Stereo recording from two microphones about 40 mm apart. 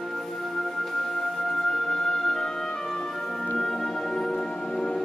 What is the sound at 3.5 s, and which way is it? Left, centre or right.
Music, centre.